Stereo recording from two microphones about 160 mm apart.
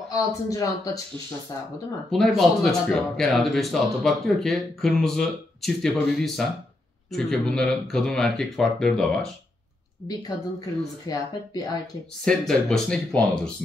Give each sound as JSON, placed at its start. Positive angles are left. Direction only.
{"t": 0.1, "sound": "speech", "side_deg": 20}
{"t": 2.0, "sound": "speech", "side_deg": 0}
{"t": 10.0, "sound": "speech", "side_deg": 25}
{"t": 12.3, "sound": "speech", "side_deg": 5}